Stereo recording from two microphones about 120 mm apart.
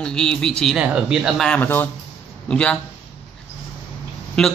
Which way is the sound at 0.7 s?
10° right (ahead or behind).